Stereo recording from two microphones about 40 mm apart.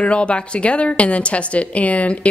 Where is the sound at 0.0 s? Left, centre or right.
Left.